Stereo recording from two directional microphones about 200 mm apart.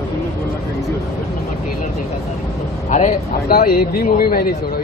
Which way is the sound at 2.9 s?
45° left (ahead or behind).